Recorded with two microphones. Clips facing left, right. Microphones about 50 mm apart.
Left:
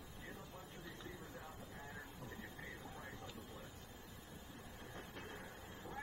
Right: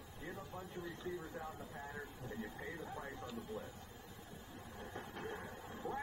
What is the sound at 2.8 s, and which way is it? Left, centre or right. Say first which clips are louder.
Speech: right 5 dB; right.